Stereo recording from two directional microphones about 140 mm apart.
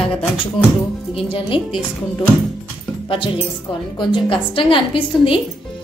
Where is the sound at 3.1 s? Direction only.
40° left (ahead or behind).